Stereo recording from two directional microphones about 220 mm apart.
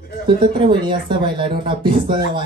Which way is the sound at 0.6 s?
20° right (ahead or behind).